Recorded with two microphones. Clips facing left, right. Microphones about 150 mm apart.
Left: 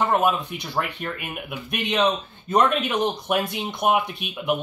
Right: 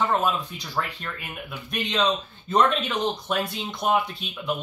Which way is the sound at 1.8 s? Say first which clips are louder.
Left 2 dB; 15° left (ahead or behind).